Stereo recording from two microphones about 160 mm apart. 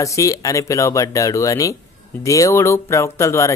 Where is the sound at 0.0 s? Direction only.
20° left (ahead or behind).